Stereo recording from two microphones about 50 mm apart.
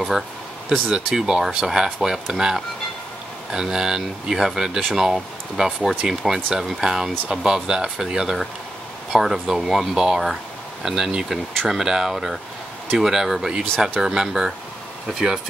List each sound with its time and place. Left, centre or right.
0.8 s speech: centre